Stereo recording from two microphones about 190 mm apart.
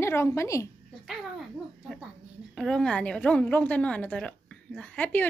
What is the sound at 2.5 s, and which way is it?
A woman's voice, 5° left (ahead or behind).